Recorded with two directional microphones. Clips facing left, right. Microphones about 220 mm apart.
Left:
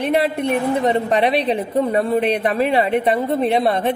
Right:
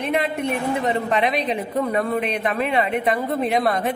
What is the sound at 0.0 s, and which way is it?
A woman's voice, 30° left (ahead or behind).